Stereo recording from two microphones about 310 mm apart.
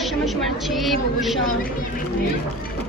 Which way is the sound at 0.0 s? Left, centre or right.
Centre.